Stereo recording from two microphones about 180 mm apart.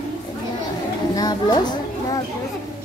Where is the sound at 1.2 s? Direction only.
20° left (ahead or behind).